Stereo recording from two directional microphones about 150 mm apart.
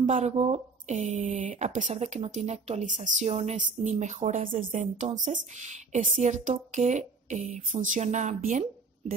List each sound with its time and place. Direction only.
0.0 s speech: 50° right (ahead or behind)